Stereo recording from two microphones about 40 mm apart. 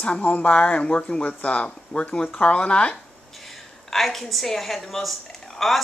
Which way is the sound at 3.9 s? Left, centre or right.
Centre.